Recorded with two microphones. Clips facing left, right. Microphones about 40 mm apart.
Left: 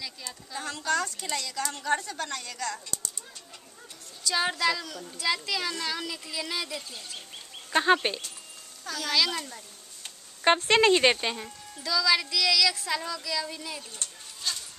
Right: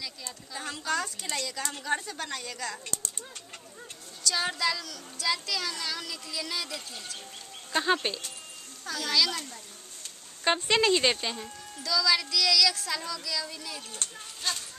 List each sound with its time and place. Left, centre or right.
0.5 s speech: centre
4.2 s speech: centre
8.8 s a child's voice: centre
9.1 s speech: centre
10.0 s a sound: left
10.7 s speech: centre